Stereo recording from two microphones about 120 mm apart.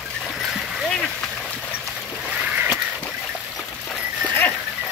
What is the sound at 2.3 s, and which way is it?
Rowboat, 10° right (ahead or behind).